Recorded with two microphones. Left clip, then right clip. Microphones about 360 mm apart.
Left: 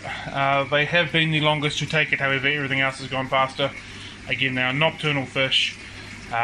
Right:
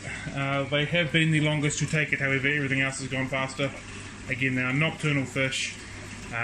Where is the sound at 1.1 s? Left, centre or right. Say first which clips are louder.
Left 5 dB; centre.